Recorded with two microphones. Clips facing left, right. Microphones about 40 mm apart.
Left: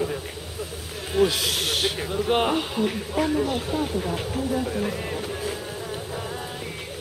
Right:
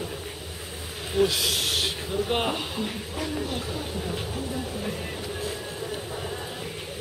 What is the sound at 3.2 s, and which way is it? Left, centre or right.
Speech, left.